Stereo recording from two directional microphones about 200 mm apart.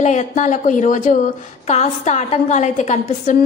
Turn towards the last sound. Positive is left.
turn(degrees=35)  # may be behind; listen again after turning